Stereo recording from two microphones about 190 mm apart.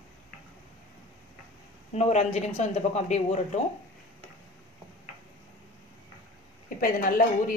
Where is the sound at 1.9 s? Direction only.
35° left (ahead or behind).